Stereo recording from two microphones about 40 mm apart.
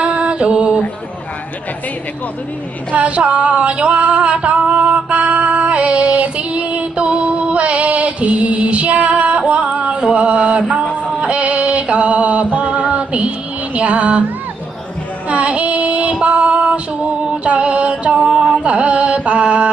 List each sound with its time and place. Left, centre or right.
0.0 s mantra: right
2.9 s female singing: right
11.1 s music: right
13.7 s female singing: right
15.2 s female singing: right
17.3 s music: right
18.2 s a sound: centre
18.6 s carnatic music: right